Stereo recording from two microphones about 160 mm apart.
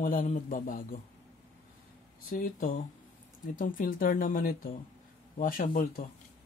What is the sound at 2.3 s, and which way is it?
A man's voice, 60° left (ahead or behind).